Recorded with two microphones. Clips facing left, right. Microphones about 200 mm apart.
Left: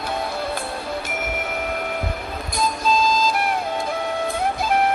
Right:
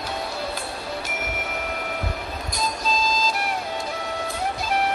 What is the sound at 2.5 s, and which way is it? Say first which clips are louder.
Music: left 6 dB; 55° left (ahead or behind).